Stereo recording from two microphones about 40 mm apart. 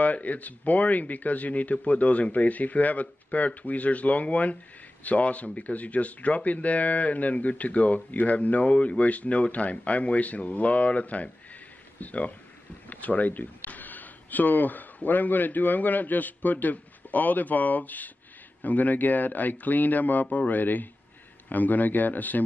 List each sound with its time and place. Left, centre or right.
0.0 s speech: left